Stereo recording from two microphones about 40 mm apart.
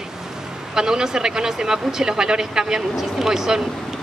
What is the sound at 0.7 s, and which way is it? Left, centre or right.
A woman's voice, centre.